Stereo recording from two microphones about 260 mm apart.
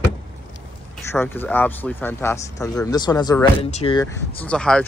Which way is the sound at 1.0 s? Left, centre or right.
Centre.